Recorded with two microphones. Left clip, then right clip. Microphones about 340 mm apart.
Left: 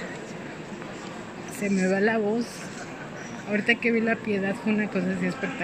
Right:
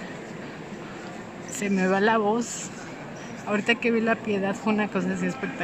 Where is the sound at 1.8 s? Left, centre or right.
Centre.